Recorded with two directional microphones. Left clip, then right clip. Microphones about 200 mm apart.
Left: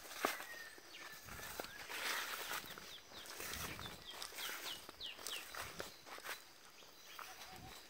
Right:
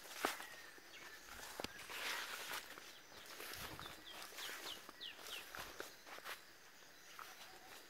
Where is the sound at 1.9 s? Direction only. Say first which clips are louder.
Left 4 dB; 45° left (ahead or behind).